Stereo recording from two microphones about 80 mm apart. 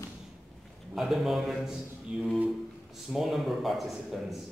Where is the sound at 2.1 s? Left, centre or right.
Centre.